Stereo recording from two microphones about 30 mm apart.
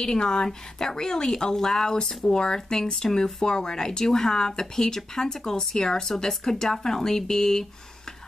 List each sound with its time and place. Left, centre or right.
0.0 s speech: left
2.0 s speech: left
4.0 s speech: centre